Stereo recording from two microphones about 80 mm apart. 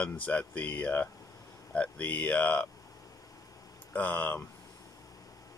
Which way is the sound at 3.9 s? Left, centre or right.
Left.